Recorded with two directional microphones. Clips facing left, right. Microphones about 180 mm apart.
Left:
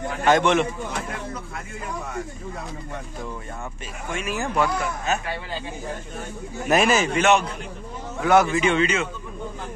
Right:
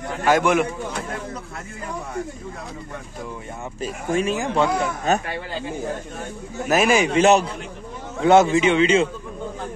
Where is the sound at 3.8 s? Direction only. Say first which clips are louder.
Right 10 dB; 35° right (ahead or behind).